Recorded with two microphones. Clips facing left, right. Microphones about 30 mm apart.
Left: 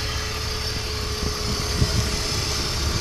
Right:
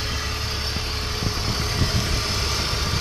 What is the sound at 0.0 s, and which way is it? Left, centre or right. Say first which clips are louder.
Vehicle: right 1 dB; centre.